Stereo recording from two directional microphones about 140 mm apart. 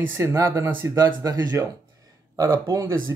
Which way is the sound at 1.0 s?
30° right (ahead or behind).